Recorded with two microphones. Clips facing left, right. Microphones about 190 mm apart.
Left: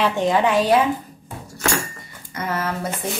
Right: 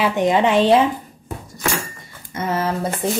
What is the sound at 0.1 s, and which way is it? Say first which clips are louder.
Speech: right 2 dB; 20° right (ahead or behind).